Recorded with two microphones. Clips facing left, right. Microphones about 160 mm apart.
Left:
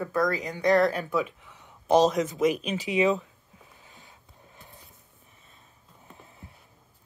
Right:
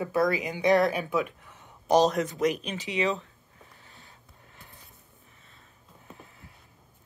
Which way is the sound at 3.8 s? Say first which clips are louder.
Left 1 dB; 15° left (ahead or behind).